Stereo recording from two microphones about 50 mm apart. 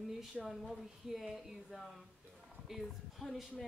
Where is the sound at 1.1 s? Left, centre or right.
Centre.